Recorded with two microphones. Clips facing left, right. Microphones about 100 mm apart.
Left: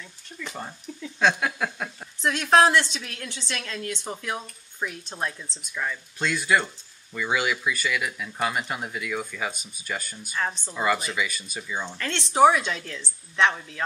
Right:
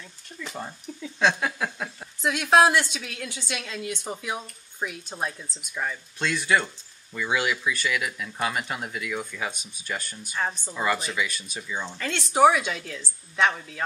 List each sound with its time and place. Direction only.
0.3 s speech: 5° left (ahead or behind)
0.9 s a sound: 5° right (ahead or behind)
1.3 s a woman's voice: centre (ahead or behind); by 5.9 s 15° right (ahead or behind)
6.1 s speech: centre (ahead or behind)
12.0 s a woman's voice: 10° right (ahead or behind)